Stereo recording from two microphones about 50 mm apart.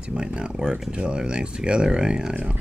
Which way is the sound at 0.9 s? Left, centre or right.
Centre.